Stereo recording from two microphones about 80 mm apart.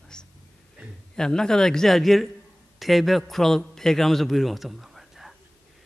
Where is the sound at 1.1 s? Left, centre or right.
Centre.